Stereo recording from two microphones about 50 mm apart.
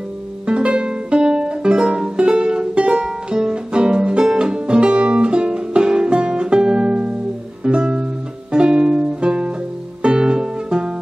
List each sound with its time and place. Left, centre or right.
0.5 s music: centre